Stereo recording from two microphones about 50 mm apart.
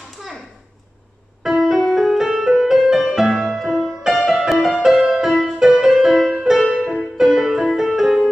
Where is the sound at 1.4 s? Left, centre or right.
Centre.